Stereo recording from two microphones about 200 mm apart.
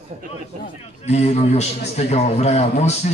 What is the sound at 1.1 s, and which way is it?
A man's voice, 30° left (ahead or behind).